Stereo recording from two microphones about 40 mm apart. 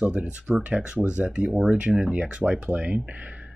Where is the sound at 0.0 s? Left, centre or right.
Right.